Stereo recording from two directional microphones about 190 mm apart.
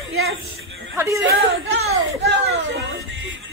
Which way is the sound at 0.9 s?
15° right (ahead or behind).